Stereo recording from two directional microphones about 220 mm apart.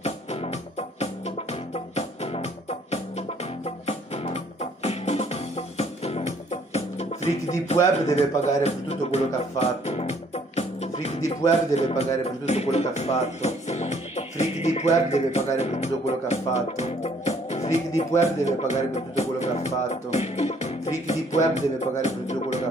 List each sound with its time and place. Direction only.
0.0 s music: 30° left (ahead or behind)
11.7 s a man's voice: 30° left (ahead or behind)